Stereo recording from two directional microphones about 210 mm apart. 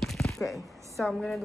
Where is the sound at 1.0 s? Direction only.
Centre (ahead or behind).